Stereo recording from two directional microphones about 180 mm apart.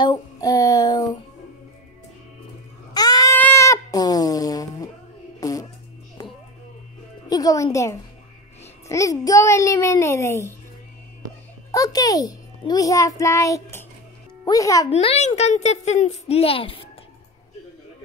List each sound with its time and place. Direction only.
0.0 s child singing: 20° left (ahead or behind)
2.9 s sheep: 20° left (ahead or behind)
5.4 s music: 20° left (ahead or behind)
7.2 s music: 20° left (ahead or behind)
8.8 s a child's voice: 15° left (ahead or behind)
11.7 s a child's voice: 20° left (ahead or behind)
14.9 s a woman's voice: 35° left (ahead or behind)